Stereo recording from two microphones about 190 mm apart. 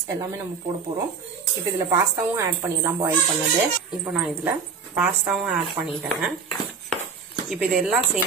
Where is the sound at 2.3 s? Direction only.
15° right (ahead or behind).